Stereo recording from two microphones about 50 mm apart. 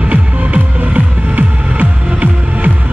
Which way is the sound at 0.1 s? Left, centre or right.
Right.